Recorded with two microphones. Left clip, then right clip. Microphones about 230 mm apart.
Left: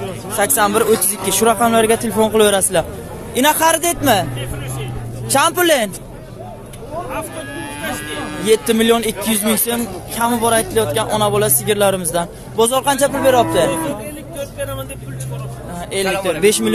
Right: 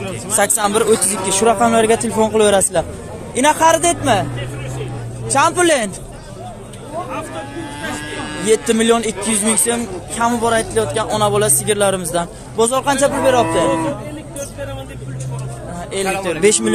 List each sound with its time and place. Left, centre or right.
0.4 s a man's voice: centre; by 4.3 s left
5.3 s speech: left
7.8 s speech: centre
16.3 s speech: centre